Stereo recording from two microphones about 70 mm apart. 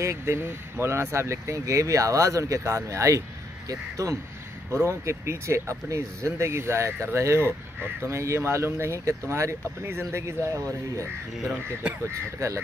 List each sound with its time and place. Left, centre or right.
0.0 s speech: right
12.1 s speech: right